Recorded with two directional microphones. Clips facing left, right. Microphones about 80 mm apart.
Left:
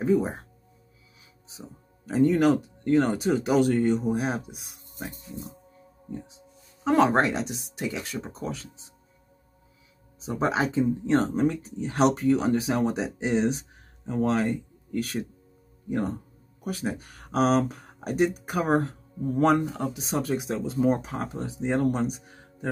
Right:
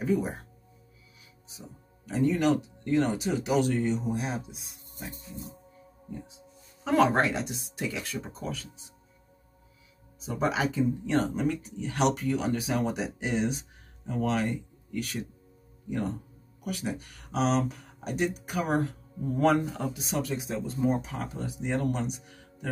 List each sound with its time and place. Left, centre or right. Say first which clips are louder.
0.0 s speech: left 4 dB; left
2.0 s speech: left 4 dB; left
6.0 s speech: left 3 dB; left
10.2 s speech: left 2 dB; left
16.6 s speech: left 3 dB; left
18.6 s speech: left 4 dB; left
20.2 s speech: left 4 dB; left
21.3 s speech: left 6 dB; left
21.7 s speech: left 5 dB; left